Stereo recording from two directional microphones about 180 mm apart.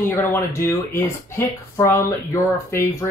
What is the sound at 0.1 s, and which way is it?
Speech, 10° left (ahead or behind).